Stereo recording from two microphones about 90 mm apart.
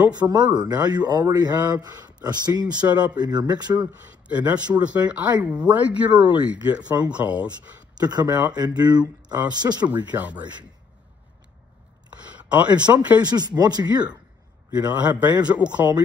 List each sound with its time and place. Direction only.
0.1 s speech: 50° right (ahead or behind)
4.9 s speech: 15° right (ahead or behind)
8.0 s speech: 50° right (ahead or behind)
9.8 s speech: 20° right (ahead or behind)
12.8 s speech: 50° right (ahead or behind)
14.9 s speech: 15° right (ahead or behind)